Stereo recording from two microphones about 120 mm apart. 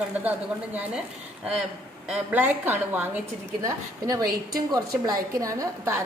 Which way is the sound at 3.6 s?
30° right (ahead or behind).